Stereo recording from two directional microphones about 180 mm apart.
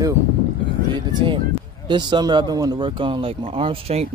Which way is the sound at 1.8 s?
25° right (ahead or behind).